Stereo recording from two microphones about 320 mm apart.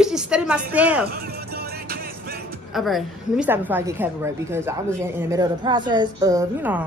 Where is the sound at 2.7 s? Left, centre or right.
Centre.